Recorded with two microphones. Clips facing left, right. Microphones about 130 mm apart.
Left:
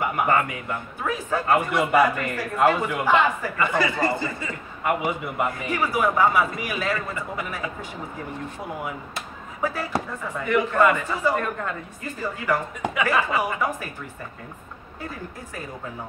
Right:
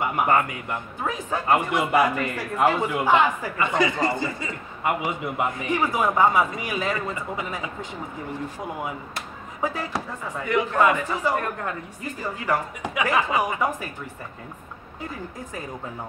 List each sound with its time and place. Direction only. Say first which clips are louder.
0.1 s a man's voice: right 1 dB; 15° right (ahead or behind)
10.4 s a man's voice: left 1 dB; 15° right (ahead or behind)